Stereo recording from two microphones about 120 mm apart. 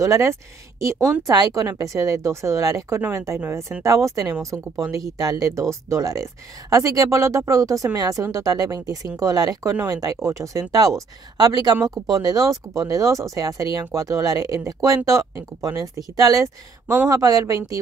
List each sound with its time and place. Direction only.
0.0 s speech: 25° right (ahead or behind)